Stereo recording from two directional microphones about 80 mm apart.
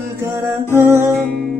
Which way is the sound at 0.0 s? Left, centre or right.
Right.